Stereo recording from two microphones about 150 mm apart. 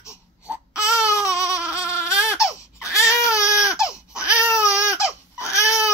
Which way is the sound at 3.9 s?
5° right (ahead or behind).